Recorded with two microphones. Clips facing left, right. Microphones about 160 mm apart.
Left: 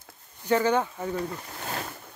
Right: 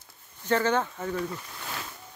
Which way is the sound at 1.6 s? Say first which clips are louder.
Left 6 dB; 50° left (ahead or behind).